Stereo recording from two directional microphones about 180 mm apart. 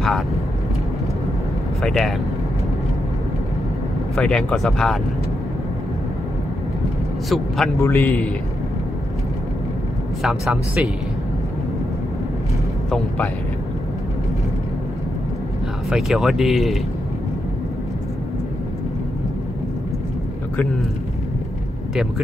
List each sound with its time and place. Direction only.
1.8 s speech: centre (ahead or behind)
4.1 s speech: 5° left (ahead or behind)
7.2 s speech: centre (ahead or behind)
7.8 s a man's voice: 10° left (ahead or behind)
10.2 s speech: centre (ahead or behind)
15.9 s speech: centre (ahead or behind)